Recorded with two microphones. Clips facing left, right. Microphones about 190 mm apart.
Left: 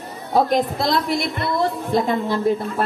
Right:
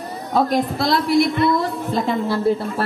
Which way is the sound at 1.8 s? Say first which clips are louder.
Even; 15° left (ahead or behind).